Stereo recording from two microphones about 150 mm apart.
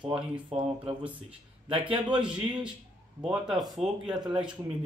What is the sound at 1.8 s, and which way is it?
Speech, 35° right (ahead or behind).